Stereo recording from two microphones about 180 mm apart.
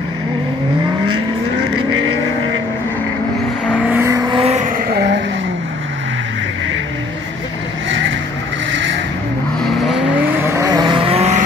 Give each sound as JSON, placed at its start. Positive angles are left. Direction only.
{"t": 3.9, "sound": "vehicle", "side_deg": -15}
{"t": 4.3, "sound": "vehicle", "side_deg": -35}
{"t": 4.7, "sound": "a sound", "side_deg": -60}
{"t": 8.7, "sound": "vehicle", "side_deg": -90}
{"t": 10.4, "sound": "vehicle", "side_deg": -15}